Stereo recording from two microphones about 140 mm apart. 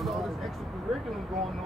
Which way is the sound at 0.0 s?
Centre (ahead or behind).